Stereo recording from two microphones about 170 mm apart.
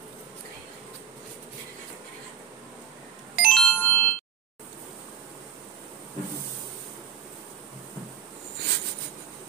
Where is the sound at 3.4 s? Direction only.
5° left (ahead or behind).